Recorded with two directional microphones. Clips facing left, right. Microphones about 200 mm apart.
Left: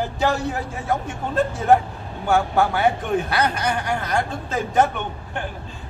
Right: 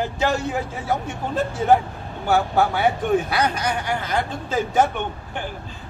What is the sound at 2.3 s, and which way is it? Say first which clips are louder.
A man's voice: even; 5° right (ahead or behind).